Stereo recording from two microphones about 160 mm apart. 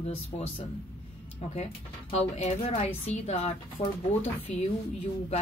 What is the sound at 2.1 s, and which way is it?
Speech, 40° left (ahead or behind).